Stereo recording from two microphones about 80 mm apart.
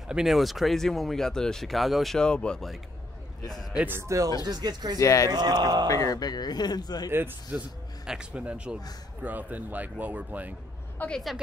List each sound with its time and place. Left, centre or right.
0.1 s speech: centre
2.1 s speech: centre
3.9 s speech: right
4.4 s speech: right
4.9 s speech: left
5.3 s speech: right
5.9 s speech: left
7.5 s a man's voice: centre
11.0 s speech: left